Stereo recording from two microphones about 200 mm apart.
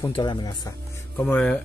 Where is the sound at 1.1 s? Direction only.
10° left (ahead or behind).